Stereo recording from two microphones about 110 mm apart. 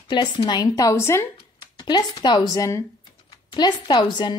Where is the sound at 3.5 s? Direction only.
40° left (ahead or behind).